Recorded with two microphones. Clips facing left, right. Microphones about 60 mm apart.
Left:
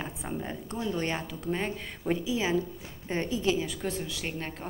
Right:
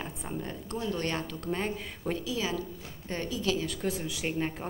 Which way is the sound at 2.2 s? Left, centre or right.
Left.